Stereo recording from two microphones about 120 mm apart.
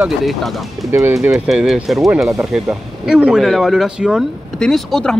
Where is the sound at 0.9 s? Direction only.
20° right (ahead or behind).